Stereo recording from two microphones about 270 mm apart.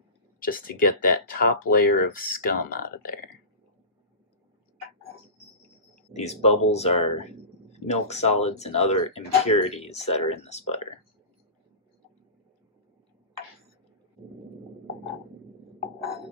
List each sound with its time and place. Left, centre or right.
0.4 s speech: left
6.1 s speech: left